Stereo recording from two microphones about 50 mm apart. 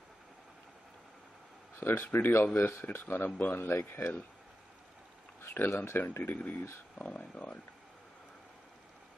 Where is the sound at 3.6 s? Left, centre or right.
Left.